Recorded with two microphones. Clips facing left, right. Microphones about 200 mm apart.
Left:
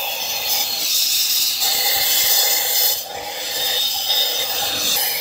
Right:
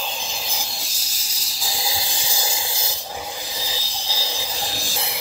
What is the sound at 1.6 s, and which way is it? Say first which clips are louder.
Snake: left 1 dB; 70° left (ahead or behind).